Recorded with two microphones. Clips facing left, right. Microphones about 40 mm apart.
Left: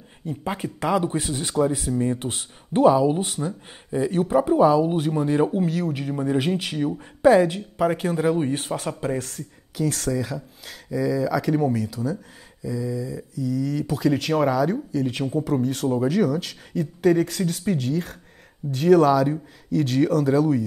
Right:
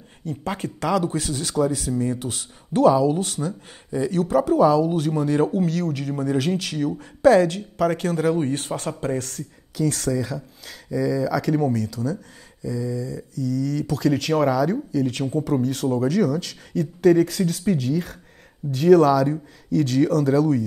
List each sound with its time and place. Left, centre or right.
0.3 s speech: centre
0.7 s speech: left